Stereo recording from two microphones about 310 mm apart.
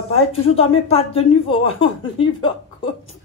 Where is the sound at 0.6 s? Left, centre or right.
Centre.